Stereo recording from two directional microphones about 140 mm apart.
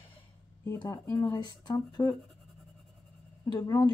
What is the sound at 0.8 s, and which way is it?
Speech, 20° left (ahead or behind).